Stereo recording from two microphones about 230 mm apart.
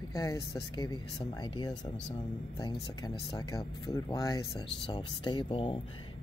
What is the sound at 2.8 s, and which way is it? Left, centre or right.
Speech, left.